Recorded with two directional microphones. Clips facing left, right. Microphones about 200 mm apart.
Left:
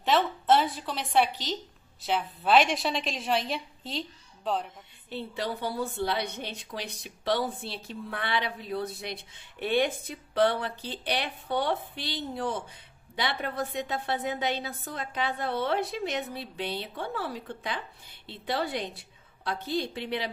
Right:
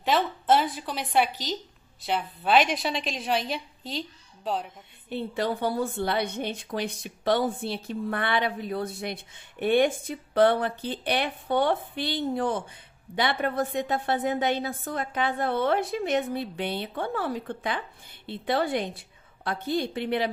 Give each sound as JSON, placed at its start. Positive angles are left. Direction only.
{"t": 0.0, "sound": "a woman's voice", "side_deg": 0}
{"t": 5.1, "sound": "a woman's voice", "side_deg": -55}